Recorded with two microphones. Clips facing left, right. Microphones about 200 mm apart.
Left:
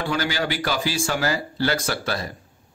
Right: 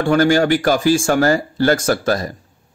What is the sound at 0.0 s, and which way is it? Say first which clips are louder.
Speech: right 11 dB; 50° right (ahead or behind).